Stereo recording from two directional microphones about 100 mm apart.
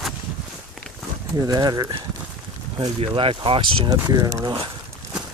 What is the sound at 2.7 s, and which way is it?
Speech, 65° right (ahead or behind).